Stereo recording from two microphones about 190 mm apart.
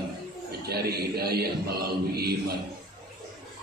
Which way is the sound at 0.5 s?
55° right (ahead or behind).